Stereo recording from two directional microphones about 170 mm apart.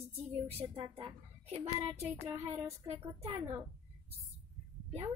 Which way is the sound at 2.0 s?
15° right (ahead or behind).